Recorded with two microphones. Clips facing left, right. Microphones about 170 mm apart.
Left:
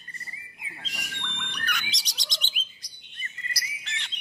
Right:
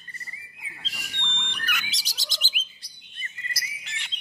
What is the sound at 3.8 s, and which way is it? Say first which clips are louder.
Bird: left 2 dB; 10° right (ahead or behind).